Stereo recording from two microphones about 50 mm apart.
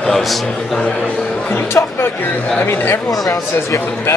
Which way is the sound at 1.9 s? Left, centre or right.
Left.